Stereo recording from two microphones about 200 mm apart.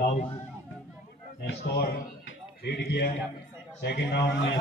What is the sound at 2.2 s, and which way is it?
Music, 55° left (ahead or behind).